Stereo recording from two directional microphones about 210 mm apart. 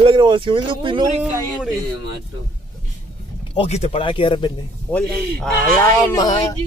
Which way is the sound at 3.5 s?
30° left (ahead or behind).